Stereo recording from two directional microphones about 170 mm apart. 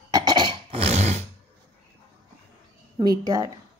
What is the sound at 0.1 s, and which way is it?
Cough, 25° right (ahead or behind).